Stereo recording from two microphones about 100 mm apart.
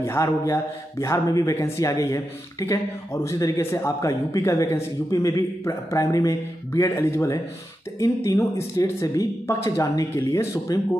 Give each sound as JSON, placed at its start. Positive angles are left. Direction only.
{"t": 0.0, "sound": "speech", "side_deg": 30}